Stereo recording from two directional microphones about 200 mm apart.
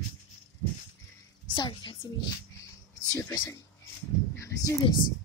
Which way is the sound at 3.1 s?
15° left (ahead or behind).